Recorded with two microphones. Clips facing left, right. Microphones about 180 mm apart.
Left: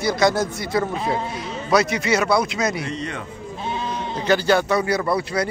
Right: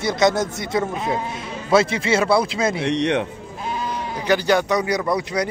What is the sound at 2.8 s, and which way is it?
Speech, 75° right (ahead or behind).